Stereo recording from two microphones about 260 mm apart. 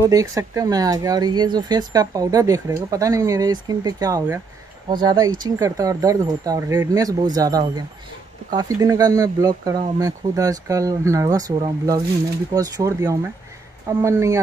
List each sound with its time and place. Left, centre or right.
0.1 s speech: centre